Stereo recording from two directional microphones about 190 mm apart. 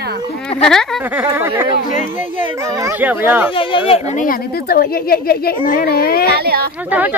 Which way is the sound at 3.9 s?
40° left (ahead or behind).